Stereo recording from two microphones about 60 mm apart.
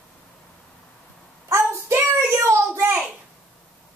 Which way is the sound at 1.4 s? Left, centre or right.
Right.